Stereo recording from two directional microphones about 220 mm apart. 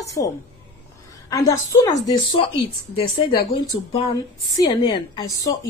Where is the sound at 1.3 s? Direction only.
15° left (ahead or behind).